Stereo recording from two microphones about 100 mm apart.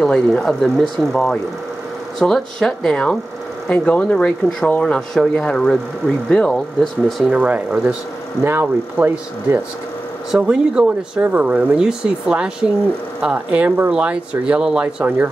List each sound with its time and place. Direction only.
0.0 s speech: 5° left (ahead or behind)
7.2 s speech: 10° right (ahead or behind)
10.3 s speech: 10° right (ahead or behind)